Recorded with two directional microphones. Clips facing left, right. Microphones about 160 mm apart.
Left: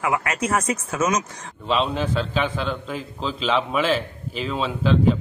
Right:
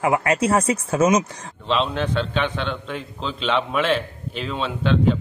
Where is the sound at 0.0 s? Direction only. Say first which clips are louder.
Right 4 dB; 30° right (ahead or behind).